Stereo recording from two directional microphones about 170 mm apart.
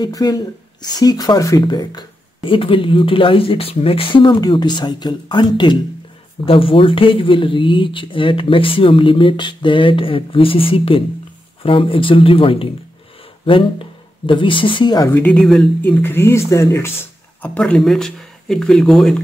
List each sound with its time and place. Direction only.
0.0 s speech: 20° left (ahead or behind)
15.0 s speech: 10° left (ahead or behind)
17.4 s speech: 5° left (ahead or behind)